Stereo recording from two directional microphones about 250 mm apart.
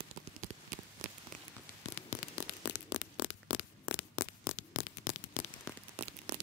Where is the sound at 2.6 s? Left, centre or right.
Left.